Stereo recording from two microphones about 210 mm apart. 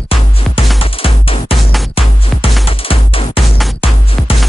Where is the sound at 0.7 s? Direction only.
25° left (ahead or behind).